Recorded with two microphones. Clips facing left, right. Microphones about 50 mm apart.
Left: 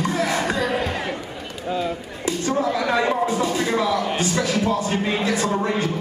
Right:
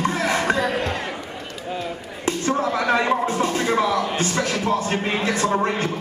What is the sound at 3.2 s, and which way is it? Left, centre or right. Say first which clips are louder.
Music: even; right.